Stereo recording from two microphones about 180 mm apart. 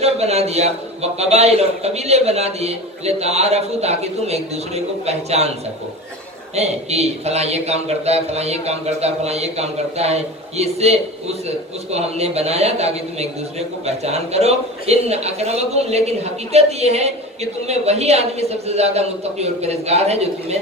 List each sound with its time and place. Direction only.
0.0 s a man's voice: 35° right (ahead or behind)
6.5 s a man's voice: 35° right (ahead or behind)